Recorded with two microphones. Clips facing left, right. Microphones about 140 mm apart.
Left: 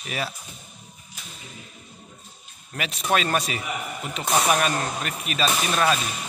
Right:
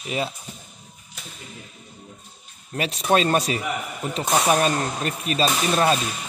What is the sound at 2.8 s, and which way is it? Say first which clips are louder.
A man's voice: right 4 dB; 25° right (ahead or behind).